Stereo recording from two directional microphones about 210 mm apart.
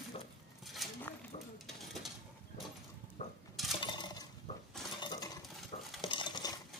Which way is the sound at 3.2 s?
35° left (ahead or behind).